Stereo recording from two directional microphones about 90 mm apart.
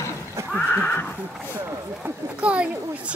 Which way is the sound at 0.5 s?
15° left (ahead or behind).